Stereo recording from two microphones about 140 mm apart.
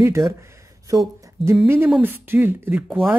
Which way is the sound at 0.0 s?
20° right (ahead or behind).